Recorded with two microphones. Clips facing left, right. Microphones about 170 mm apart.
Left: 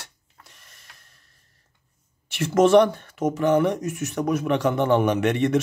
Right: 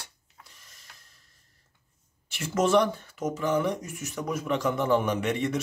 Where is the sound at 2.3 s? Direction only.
70° left (ahead or behind).